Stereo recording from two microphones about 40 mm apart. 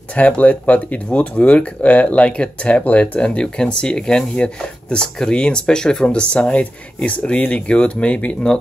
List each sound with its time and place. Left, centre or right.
0.1 s speech: left
3.0 s speech: left
6.3 s speech: left